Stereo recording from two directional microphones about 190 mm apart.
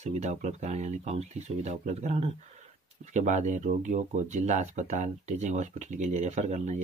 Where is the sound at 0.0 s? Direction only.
40° right (ahead or behind).